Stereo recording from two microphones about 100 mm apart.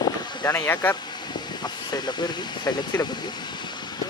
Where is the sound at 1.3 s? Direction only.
45° left (ahead or behind).